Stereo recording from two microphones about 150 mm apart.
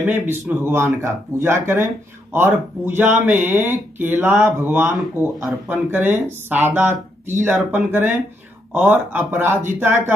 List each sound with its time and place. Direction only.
0.0 s speech: 15° right (ahead or behind)
5.9 s speech: 15° right (ahead or behind)